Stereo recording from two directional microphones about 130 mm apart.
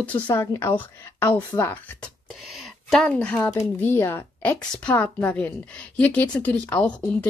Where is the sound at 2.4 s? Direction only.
Centre (ahead or behind).